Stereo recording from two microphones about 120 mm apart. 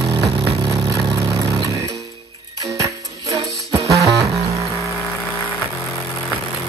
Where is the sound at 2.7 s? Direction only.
30° right (ahead or behind).